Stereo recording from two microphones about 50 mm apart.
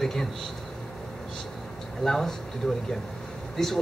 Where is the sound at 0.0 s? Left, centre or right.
Centre.